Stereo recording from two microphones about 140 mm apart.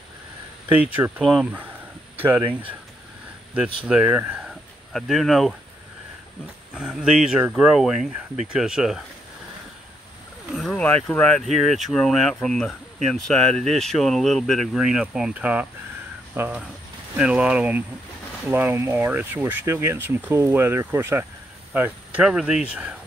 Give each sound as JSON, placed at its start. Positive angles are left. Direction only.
{"t": 0.7, "sound": "speech", "side_deg": -10}
{"t": 1.2, "sound": "speech", "side_deg": 0}
{"t": 2.1, "sound": "speech", "side_deg": -15}
{"t": 3.5, "sound": "speech", "side_deg": -10}
{"t": 6.7, "sound": "speech", "side_deg": -5}
{"t": 10.5, "sound": "a sound", "side_deg": 5}
{"t": 11.1, "sound": "speech", "side_deg": 10}